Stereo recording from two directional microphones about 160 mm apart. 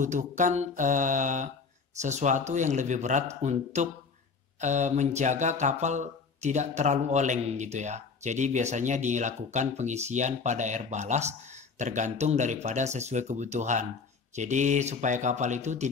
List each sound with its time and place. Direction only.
0.0 s speech: 50° right (ahead or behind)